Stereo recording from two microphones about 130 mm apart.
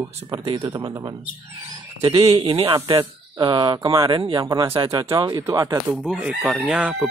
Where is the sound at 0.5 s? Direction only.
30° right (ahead or behind).